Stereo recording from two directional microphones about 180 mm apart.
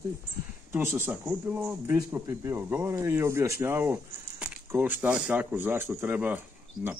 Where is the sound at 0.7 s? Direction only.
10° right (ahead or behind).